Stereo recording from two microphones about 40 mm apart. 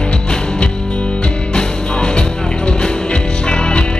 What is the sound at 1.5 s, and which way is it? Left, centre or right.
Music, left.